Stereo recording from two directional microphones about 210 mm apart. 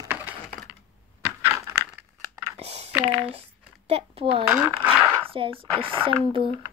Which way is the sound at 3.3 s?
30° right (ahead or behind).